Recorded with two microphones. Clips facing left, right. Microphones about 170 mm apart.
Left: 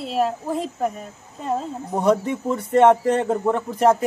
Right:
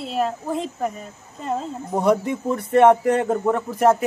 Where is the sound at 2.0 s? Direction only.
10° right (ahead or behind).